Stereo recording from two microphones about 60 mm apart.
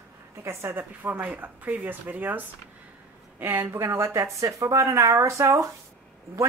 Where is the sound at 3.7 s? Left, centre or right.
Right.